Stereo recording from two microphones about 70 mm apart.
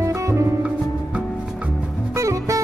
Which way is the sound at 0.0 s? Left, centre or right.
Right.